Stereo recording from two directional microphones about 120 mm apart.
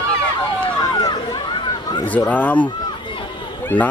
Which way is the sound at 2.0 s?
15° left (ahead or behind).